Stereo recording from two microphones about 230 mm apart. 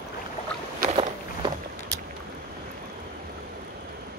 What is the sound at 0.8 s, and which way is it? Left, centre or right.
Walk, right.